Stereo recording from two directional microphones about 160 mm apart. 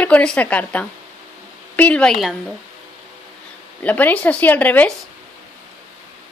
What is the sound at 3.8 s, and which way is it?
A woman's voice, 10° left (ahead or behind).